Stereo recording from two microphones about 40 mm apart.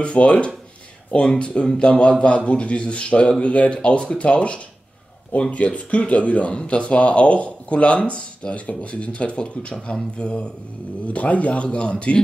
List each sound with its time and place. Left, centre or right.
0.0 s speech: left